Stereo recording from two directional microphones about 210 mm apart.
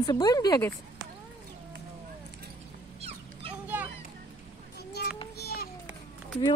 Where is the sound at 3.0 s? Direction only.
30° right (ahead or behind).